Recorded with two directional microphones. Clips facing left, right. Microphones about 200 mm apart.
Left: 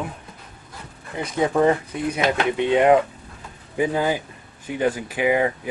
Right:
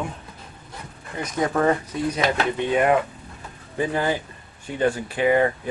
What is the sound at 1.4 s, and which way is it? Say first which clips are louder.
Speech: left 2 dB; 15° left (ahead or behind).